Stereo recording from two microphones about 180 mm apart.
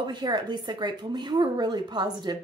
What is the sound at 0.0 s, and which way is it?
A woman's voice, 25° right (ahead or behind).